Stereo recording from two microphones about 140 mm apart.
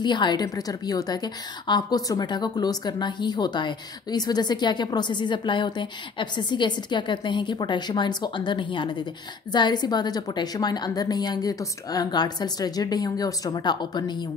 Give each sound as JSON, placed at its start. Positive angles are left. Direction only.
{"t": 0.0, "sound": "a woman's voice", "side_deg": 30}